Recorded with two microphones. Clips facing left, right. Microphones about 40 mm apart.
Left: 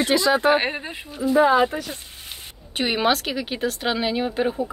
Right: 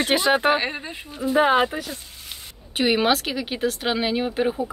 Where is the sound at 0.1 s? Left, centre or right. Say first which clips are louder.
Even; right.